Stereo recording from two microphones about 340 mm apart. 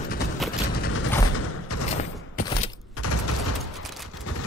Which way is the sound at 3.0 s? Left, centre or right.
Left.